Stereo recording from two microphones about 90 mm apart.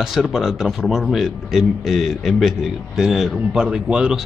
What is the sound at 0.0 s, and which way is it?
A man's voice, 5° right (ahead or behind).